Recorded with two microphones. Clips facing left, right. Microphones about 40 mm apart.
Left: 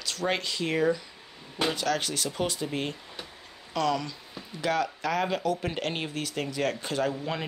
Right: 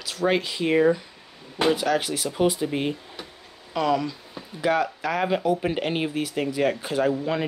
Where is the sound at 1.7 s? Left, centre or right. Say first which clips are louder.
Right 7 dB; centre.